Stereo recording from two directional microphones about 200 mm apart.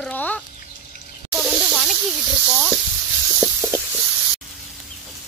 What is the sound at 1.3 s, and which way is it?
Snake, centre (ahead or behind).